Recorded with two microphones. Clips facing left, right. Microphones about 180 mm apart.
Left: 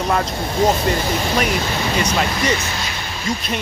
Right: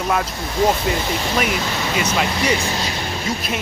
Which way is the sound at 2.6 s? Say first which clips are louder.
Right 3 dB; 35° right (ahead or behind).